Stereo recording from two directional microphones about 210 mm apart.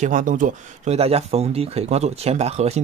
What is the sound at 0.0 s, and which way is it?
Speech, 40° right (ahead or behind).